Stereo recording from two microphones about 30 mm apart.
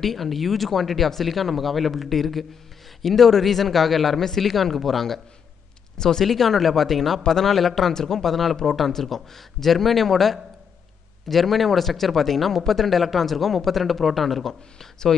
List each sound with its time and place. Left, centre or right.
0.0 s speech: centre
6.2 s speech: centre
14.5 s speech: centre